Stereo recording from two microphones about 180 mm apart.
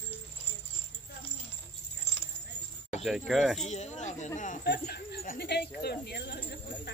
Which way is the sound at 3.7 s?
40° left (ahead or behind).